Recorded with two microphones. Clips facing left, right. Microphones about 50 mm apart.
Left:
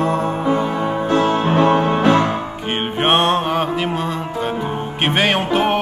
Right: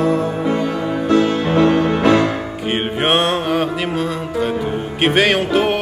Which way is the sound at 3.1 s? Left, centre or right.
Centre.